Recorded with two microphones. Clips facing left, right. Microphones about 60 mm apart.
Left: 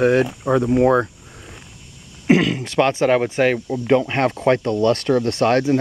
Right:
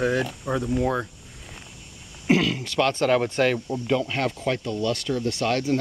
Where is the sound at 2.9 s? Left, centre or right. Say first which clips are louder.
Left 4 dB; centre.